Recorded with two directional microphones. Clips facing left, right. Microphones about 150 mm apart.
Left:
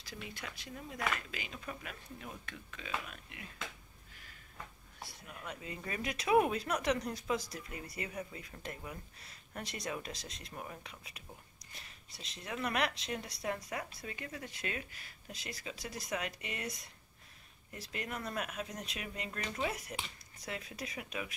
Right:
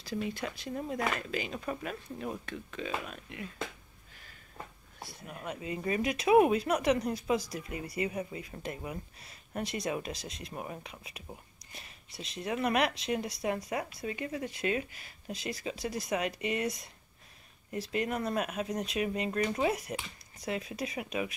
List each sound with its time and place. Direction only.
0.0 s speech: 30° right (ahead or behind)
5.2 s speech: 35° right (ahead or behind)
5.5 s speech: 15° right (ahead or behind)
10.6 s speech: 20° right (ahead or behind)
12.4 s speech: 15° right (ahead or behind)
17.9 s speech: 25° right (ahead or behind)